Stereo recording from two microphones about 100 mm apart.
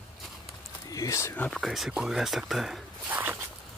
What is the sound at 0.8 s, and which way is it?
Speech, 35° left (ahead or behind).